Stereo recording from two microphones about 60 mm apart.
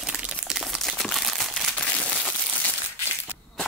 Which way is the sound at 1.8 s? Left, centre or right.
Centre.